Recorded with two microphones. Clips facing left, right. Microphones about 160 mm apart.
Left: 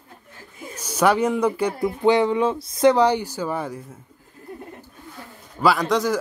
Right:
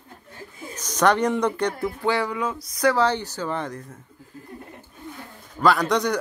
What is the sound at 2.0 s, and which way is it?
Speech, 20° left (ahead or behind).